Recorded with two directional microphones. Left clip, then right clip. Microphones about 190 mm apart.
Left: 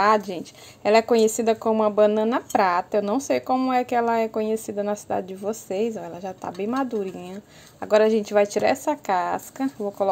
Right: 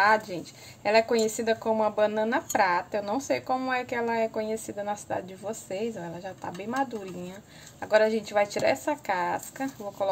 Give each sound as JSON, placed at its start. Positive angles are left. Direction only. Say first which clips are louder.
{"t": 0.0, "sound": "speech", "louder": "left 3 dB", "side_deg": 40}